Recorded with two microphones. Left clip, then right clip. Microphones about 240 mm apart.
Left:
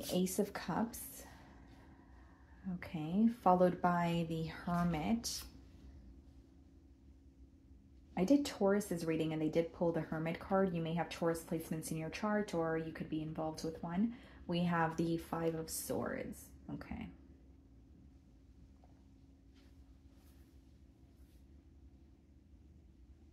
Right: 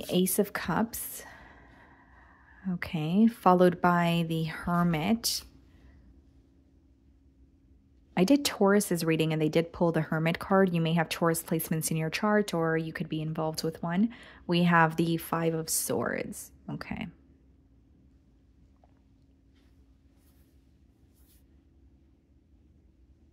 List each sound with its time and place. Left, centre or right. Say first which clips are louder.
0.1 s a woman's voice: right 9 dB; right
2.6 s a woman's voice: right 10 dB; right
8.1 s speech: right 8 dB; right